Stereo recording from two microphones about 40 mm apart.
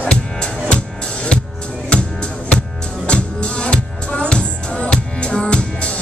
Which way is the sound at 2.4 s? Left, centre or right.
Left.